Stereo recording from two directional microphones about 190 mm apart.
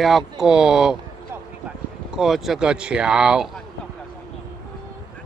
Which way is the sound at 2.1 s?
Centre (ahead or behind).